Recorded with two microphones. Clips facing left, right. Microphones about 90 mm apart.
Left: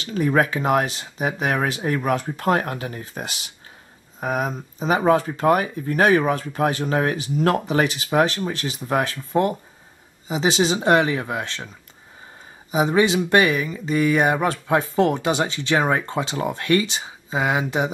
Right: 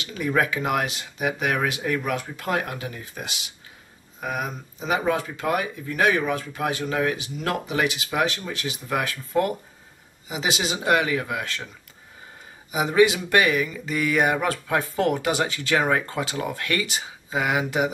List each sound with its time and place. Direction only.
0.0 s speech: 40° left (ahead or behind)
12.7 s speech: 30° left (ahead or behind)